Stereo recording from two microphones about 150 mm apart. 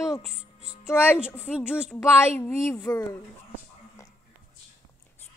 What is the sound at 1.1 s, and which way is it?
Speech, 5° right (ahead or behind).